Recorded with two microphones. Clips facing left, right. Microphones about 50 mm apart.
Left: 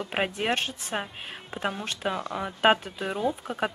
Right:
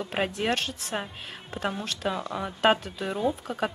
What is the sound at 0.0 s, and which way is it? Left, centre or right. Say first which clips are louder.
Speech: even; centre.